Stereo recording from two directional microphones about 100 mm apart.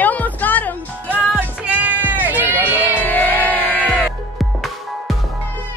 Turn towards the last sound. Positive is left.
turn(degrees=0)  # may be behind; listen again after turning